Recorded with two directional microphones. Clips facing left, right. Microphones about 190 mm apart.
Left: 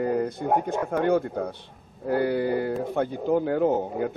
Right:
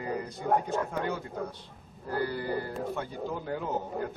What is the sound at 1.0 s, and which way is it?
Speech, 55° left (ahead or behind).